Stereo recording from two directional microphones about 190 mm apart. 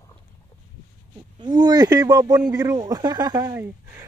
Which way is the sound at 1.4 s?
20° right (ahead or behind).